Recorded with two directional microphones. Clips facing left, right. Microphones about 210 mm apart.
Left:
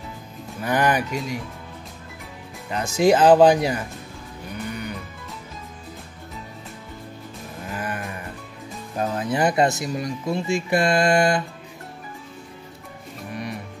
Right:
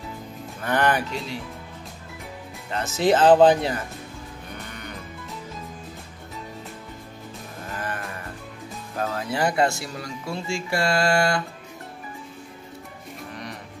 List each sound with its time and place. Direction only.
0.6 s speech: 10° left (ahead or behind)
2.7 s speech: 15° left (ahead or behind)
7.7 s music: 15° left (ahead or behind)
8.9 s speech: 20° left (ahead or behind)
13.3 s music: 10° left (ahead or behind)